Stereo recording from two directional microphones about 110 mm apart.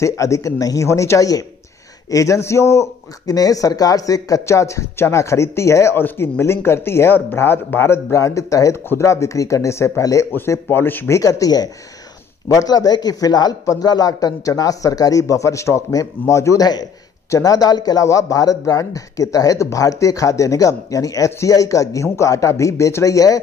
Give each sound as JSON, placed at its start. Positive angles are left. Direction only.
{"t": 0.0, "sound": "speech", "side_deg": 25}
{"t": 11.1, "sound": "speech", "side_deg": 30}